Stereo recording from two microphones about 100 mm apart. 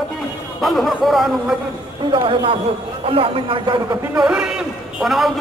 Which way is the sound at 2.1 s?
65° right (ahead or behind).